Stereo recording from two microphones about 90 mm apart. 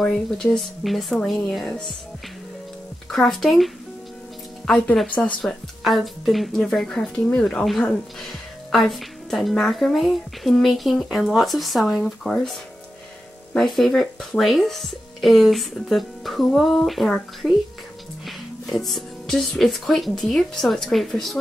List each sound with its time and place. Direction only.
0.0 s a woman's voice: 5° left (ahead or behind)
3.1 s a woman's voice: centre (ahead or behind)
5.1 s speech: 15° left (ahead or behind)
5.4 s a woman's voice: centre (ahead or behind)
13.6 s a woman's voice: centre (ahead or behind)